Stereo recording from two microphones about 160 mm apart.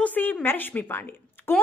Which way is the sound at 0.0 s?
10° left (ahead or behind).